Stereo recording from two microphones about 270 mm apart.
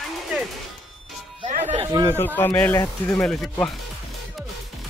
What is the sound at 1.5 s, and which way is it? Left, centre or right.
Music, right.